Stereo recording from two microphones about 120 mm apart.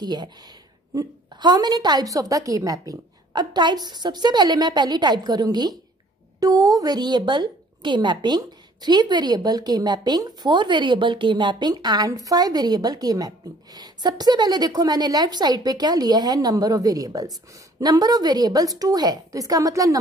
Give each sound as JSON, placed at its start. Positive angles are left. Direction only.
{"t": 0.0, "sound": "a woman's voice", "side_deg": -35}